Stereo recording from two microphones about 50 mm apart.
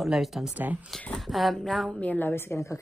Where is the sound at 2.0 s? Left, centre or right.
Left.